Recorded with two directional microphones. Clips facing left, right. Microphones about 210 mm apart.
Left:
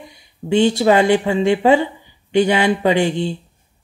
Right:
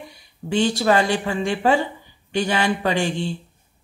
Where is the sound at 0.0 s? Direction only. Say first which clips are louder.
Left 3 dB; 20° left (ahead or behind).